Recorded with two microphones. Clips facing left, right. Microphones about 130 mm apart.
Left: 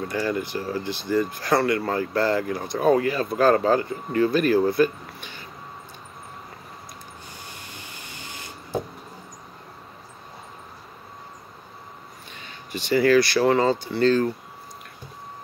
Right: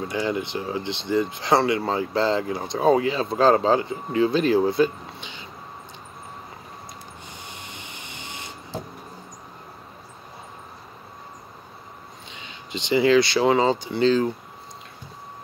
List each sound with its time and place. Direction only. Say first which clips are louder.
0.1 s speech: even; 20° right (ahead or behind)
7.4 s printer: right 1 dB; 20° right (ahead or behind)
12.3 s speech: even; 20° right (ahead or behind)